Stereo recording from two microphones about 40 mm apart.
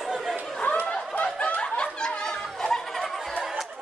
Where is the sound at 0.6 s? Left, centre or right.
Left.